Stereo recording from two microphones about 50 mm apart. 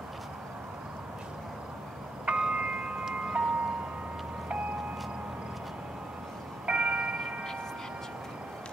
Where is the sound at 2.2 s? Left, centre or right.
Right.